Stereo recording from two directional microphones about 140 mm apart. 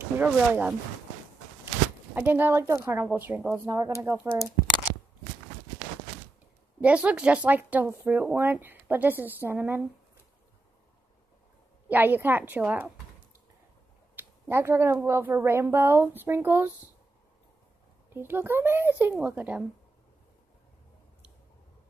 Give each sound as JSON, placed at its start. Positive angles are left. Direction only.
{"t": 0.2, "sound": "speech", "side_deg": -10}
{"t": 2.1, "sound": "speech", "side_deg": -15}
{"t": 3.6, "sound": "speech", "side_deg": -20}
{"t": 6.8, "sound": "speech", "side_deg": -10}
{"t": 11.9, "sound": "speech", "side_deg": -15}
{"t": 14.1, "sound": "speech", "side_deg": -15}
{"t": 18.1, "sound": "speech", "side_deg": -15}